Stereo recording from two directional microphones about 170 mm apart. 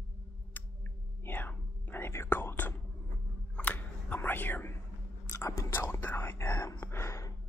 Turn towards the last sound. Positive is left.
turn(degrees=15)  # may be behind; listen again after turning